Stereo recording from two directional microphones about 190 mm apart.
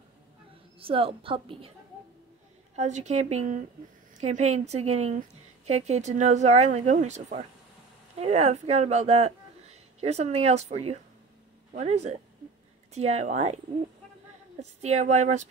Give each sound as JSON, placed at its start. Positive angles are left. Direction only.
{"t": 0.7, "sound": "a woman's voice", "side_deg": -30}
{"t": 2.7, "sound": "a woman's voice", "side_deg": -35}
{"t": 14.6, "sound": "a woman's voice", "side_deg": -35}